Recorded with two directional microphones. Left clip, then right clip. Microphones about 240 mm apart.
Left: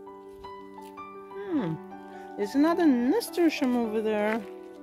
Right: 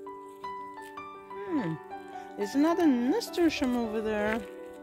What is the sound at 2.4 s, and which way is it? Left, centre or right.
Speech, centre.